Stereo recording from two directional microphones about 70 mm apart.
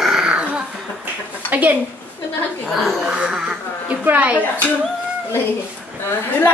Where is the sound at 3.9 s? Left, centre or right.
Right.